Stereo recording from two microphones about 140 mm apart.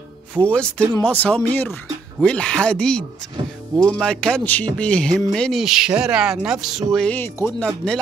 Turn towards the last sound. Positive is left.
turn(degrees=5)  # may be behind; listen again after turning